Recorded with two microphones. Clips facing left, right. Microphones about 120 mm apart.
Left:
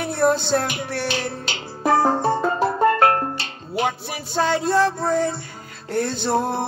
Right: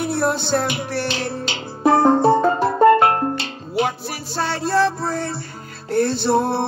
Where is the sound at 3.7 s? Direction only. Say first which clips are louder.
Right 2 dB; centre (ahead or behind).